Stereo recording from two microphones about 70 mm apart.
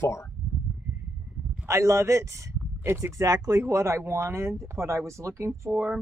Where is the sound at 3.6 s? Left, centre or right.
Right.